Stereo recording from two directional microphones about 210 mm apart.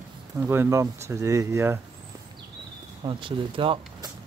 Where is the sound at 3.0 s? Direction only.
25° right (ahead or behind).